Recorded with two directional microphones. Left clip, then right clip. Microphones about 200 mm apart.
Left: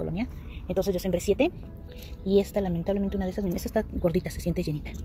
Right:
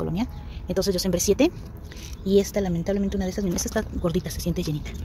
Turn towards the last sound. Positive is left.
turn(degrees=-5)  # may be behind; listen again after turning